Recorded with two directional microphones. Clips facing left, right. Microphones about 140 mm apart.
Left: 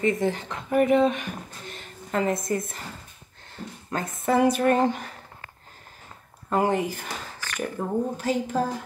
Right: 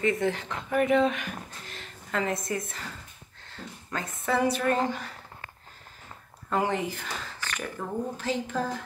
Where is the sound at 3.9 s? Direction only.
45° left (ahead or behind).